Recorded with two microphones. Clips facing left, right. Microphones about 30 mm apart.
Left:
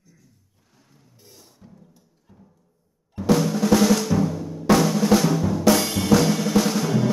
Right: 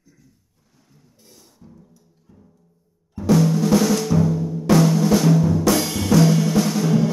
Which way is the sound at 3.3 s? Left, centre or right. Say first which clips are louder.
Right 3 dB; left.